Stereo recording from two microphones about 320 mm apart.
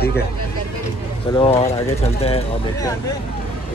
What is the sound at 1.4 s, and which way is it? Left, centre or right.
Speech, centre.